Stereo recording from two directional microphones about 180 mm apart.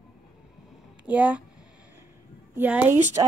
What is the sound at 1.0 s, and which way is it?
Speech, 10° right (ahead or behind).